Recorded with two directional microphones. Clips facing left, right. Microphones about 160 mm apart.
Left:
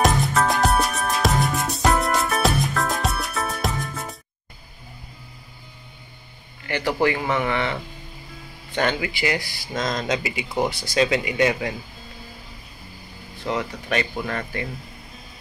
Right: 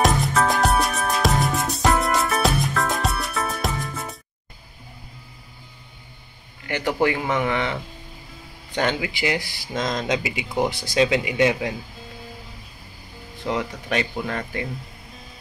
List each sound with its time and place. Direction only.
0.0 s music: centre (ahead or behind)
6.7 s speech: 15° right (ahead or behind)
13.5 s speech: 15° right (ahead or behind)